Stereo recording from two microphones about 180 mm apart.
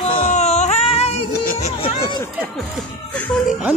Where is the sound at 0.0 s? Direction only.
30° left (ahead or behind).